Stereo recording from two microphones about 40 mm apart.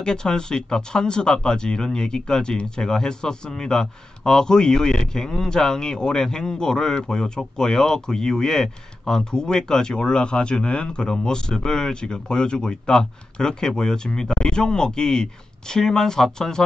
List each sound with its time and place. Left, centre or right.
0.0 s a man's voice: centre